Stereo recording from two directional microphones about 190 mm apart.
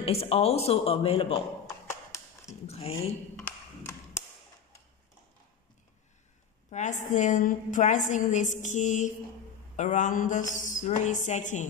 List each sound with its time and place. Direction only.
0.0 s a woman's voice: 30° left (ahead or behind)
2.6 s speech: 35° left (ahead or behind)
6.7 s a woman's voice: 40° left (ahead or behind)